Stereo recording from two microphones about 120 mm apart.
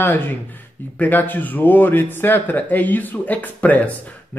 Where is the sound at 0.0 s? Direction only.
15° left (ahead or behind).